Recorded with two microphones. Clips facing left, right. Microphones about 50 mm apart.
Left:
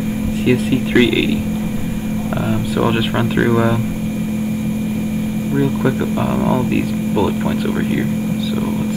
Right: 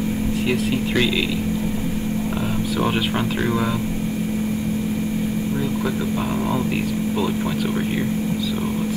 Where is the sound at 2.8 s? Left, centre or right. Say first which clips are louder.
Left 4 dB; centre.